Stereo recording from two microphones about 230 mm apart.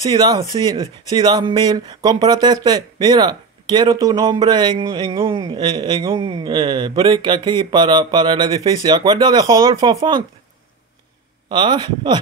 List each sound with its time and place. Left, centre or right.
0.0 s speech: centre
11.5 s speech: centre